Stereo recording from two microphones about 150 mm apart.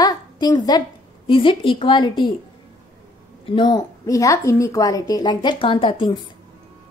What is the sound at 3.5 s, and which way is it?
A woman's voice, 25° left (ahead or behind).